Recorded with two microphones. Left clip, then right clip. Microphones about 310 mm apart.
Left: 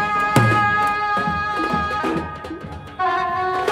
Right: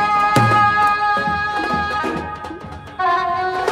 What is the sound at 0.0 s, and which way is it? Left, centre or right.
Music, right.